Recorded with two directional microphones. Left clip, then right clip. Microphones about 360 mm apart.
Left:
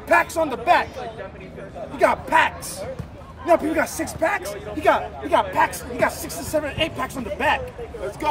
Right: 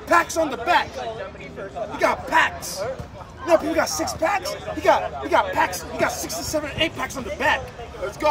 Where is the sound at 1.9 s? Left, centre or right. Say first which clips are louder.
Left 2 dB; centre.